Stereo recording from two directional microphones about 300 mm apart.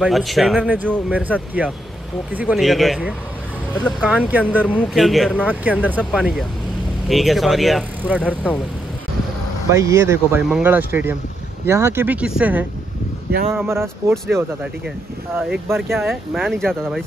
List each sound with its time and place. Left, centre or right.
0.0 s speech: centre
9.7 s speech: centre
15.3 s speech: centre